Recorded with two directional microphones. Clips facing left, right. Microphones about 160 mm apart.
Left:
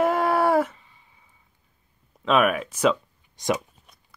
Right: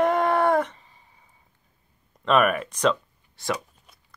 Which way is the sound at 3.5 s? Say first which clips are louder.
Left 3 dB; centre (ahead or behind).